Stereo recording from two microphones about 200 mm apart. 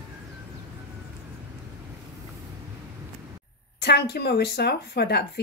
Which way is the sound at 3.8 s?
55° left (ahead or behind).